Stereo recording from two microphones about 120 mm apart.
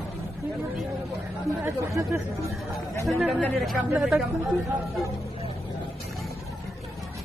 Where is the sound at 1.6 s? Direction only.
25° right (ahead or behind).